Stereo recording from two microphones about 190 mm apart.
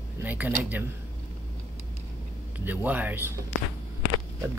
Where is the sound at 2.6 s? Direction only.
10° right (ahead or behind).